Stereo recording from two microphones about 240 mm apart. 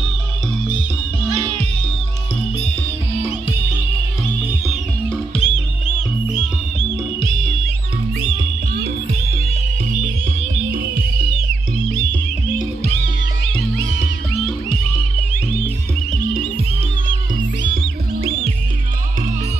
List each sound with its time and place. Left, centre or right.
1.3 s music: centre
4.6 s music: centre